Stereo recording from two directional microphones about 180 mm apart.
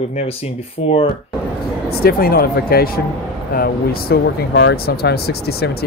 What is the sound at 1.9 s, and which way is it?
Speech, 60° left (ahead or behind).